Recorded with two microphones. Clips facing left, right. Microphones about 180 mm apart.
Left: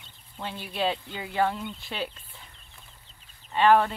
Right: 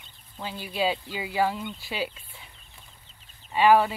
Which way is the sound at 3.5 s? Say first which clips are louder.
Right 1 dB; 5° right (ahead or behind).